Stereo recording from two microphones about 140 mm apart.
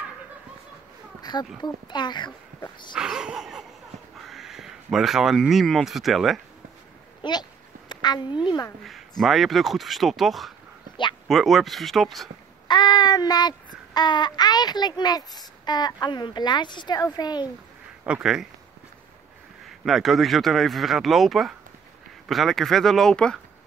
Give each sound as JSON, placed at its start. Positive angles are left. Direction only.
{"t": 1.2, "sound": "a sound", "side_deg": 30}
{"t": 1.6, "sound": "a child's voice", "side_deg": 30}
{"t": 3.0, "sound": "speech", "side_deg": -5}
{"t": 7.2, "sound": "a sound", "side_deg": 30}
{"t": 7.9, "sound": "a woman's voice", "side_deg": 30}
{"t": 9.2, "sound": "speech", "side_deg": 0}
{"t": 12.6, "sound": "child singing", "side_deg": 30}
{"t": 13.9, "sound": "a child's voice", "side_deg": 30}
{"t": 18.0, "sound": "speech", "side_deg": -5}
{"t": 19.6, "sound": "speech", "side_deg": 0}